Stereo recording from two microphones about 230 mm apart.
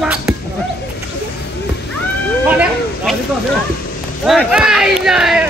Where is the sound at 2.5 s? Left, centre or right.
Centre.